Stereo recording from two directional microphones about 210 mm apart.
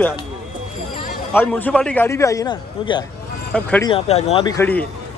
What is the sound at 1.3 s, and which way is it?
Speech, 10° left (ahead or behind).